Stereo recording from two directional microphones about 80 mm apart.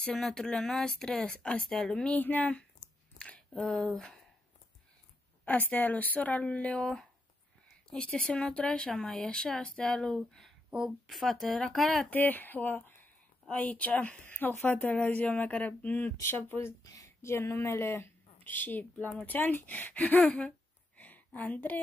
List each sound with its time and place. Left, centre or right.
0.0 s speech: centre
2.1 s speech: left; by 4.2 s centre
5.4 s speech: centre
12.1 s speech: left
16.8 s speech: left; by 20.5 s centre
21.0 s a sound: left